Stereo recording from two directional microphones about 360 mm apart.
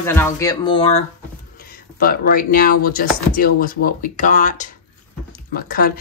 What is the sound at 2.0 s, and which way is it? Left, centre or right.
Speech, left.